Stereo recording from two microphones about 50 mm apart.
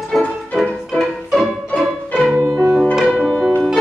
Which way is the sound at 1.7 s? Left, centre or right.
Left.